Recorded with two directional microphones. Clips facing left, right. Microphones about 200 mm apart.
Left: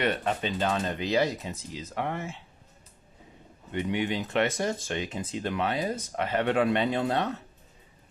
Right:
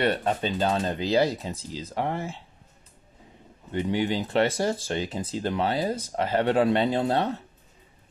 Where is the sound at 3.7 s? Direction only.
35° right (ahead or behind).